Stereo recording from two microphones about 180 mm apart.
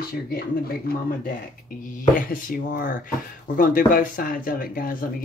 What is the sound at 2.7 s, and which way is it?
Speech, 50° left (ahead or behind).